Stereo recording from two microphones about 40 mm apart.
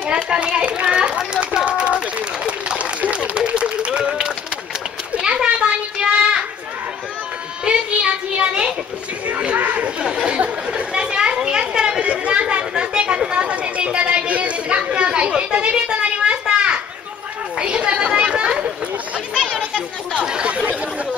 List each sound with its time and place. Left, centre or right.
0.0 s a sound: right
0.8 s children playing: right
1.7 s run: right
2.8 s applause: right
5.2 s children playing: right
7.6 s child singing: right
9.3 s a sound: right
10.2 s chatter: right
15.6 s a sound: right
17.6 s chatter: right
20.2 s chatter: right
20.5 s chatter: right